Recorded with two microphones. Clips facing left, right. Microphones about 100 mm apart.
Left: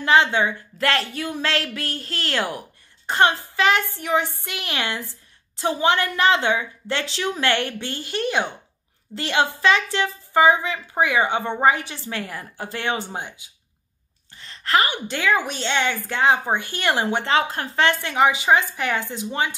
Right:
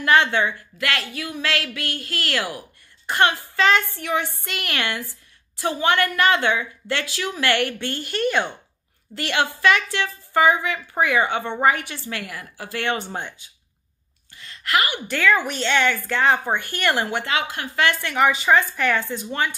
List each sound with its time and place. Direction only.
0.0 s a woman's voice: 20° left (ahead or behind)
0.7 s a woman's voice: 30° left (ahead or behind); by 13.5 s 15° left (ahead or behind)
14.3 s a sound: 30° left (ahead or behind)
15.0 s a woman's voice: 20° left (ahead or behind)
17.3 s a woman's voice: 30° left (ahead or behind)
18.0 s a woman's voice: 20° left (ahead or behind)